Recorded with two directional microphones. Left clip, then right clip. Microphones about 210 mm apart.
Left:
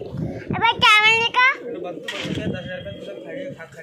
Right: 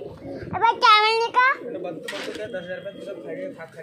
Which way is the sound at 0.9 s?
20° right (ahead or behind).